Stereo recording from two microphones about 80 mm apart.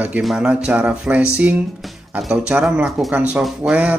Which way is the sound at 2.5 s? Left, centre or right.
Centre.